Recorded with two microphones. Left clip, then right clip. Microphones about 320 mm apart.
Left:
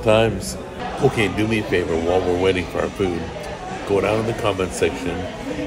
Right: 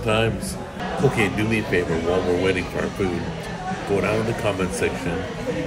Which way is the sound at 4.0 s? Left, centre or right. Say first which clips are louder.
Left 4 dB; centre.